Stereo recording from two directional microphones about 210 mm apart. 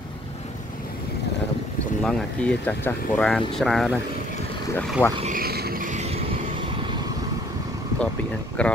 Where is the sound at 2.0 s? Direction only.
5° left (ahead or behind).